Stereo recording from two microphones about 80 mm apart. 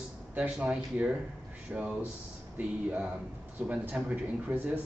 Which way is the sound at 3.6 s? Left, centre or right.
Centre.